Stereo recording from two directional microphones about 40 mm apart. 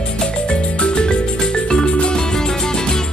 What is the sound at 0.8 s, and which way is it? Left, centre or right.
Music, left.